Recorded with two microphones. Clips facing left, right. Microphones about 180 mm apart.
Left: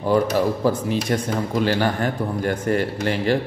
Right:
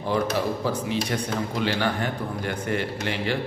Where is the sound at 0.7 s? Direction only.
45° left (ahead or behind).